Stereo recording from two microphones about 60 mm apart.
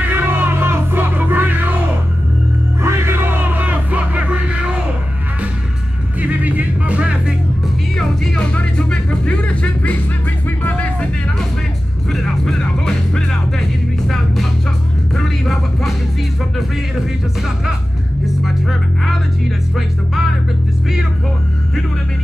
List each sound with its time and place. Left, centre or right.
0.0 s music: right
2.8 s music: right
3.3 s music: right
6.2 s music: right
7.9 s music: centre; by 11.1 s left
12.1 s music: centre
18.2 s music: centre